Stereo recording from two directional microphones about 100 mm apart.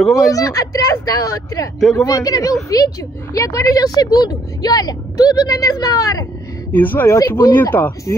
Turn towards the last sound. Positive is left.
turn(degrees=20)  # may be behind; listen again after turning